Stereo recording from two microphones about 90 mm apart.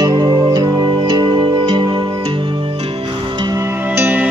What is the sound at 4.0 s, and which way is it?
Music, 20° right (ahead or behind).